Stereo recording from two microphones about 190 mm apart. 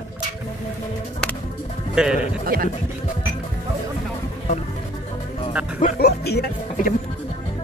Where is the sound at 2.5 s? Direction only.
50° right (ahead or behind).